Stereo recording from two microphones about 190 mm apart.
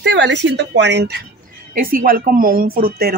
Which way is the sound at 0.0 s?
65° right (ahead or behind).